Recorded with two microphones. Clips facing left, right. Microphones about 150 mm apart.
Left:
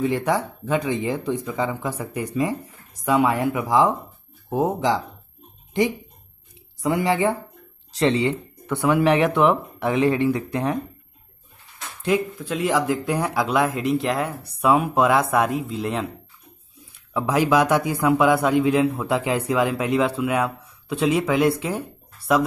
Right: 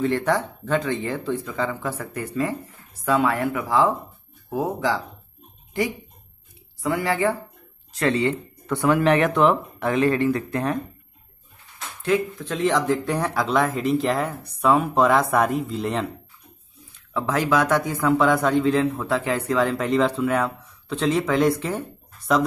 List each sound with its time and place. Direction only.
0.0 s speech: 10° left (ahead or behind)
6.8 s speech: 20° left (ahead or behind)
12.0 s speech: 10° left (ahead or behind)
16.9 s speech: 15° left (ahead or behind)